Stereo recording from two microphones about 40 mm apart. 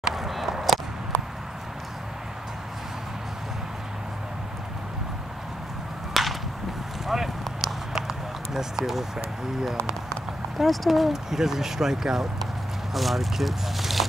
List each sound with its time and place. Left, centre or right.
0.0 s a sound: centre
6.2 s whip: centre
7.1 s clip-clop: centre
8.5 s speech: centre
10.6 s speech: centre
12.9 s speech: centre